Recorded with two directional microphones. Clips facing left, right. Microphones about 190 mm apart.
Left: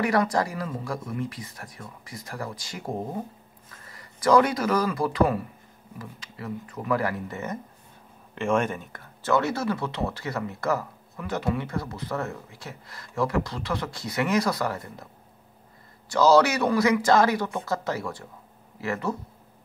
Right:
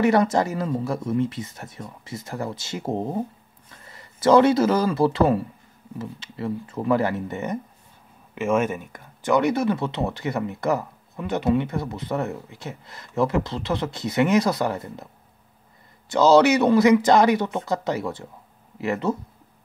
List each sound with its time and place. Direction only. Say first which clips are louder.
0.0 s speech: right 5 dB; 25° right (ahead or behind)
8.4 s speech: right 3 dB; 5° right (ahead or behind); by 15.0 s 20° right (ahead or behind)
16.1 s speech: right 3 dB; 20° right (ahead or behind)